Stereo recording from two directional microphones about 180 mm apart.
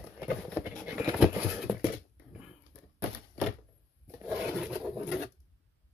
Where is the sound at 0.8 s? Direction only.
5° right (ahead or behind).